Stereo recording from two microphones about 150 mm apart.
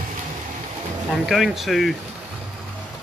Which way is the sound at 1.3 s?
Centre (ahead or behind).